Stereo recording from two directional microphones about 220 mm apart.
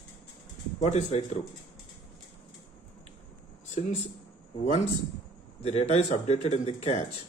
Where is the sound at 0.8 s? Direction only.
30° left (ahead or behind).